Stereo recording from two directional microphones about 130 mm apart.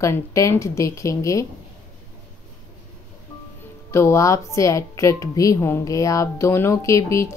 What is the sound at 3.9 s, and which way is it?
Speech, 20° left (ahead or behind).